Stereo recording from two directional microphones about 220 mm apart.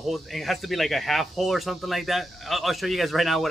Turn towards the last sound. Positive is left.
turn(degrees=0)  # may be behind; listen again after turning